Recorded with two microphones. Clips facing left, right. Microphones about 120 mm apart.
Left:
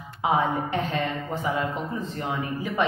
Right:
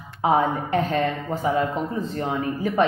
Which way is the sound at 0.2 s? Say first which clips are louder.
Right 3 dB; 40° right (ahead or behind).